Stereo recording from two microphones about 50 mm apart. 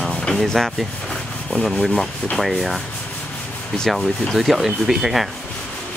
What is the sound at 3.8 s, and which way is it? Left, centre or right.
Speech, centre.